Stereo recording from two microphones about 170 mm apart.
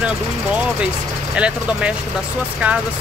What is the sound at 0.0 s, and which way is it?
Speech, 5° right (ahead or behind).